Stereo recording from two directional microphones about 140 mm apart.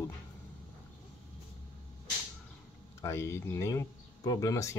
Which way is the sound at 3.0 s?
20° left (ahead or behind).